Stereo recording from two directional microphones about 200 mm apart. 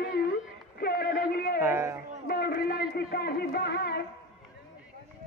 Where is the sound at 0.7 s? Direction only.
50° left (ahead or behind).